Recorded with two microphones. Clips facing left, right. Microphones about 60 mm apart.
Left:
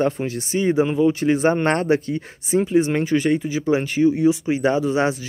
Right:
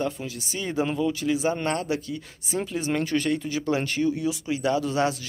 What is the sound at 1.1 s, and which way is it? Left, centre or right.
Speech, left.